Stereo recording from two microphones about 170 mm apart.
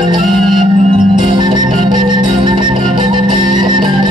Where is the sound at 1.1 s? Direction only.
25° right (ahead or behind).